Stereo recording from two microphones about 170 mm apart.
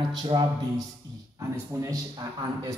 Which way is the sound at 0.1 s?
25° right (ahead or behind).